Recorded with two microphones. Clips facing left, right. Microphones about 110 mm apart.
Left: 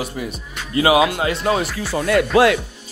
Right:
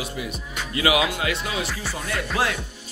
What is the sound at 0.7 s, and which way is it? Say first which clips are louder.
Speech: left 7 dB; 35° left (ahead or behind).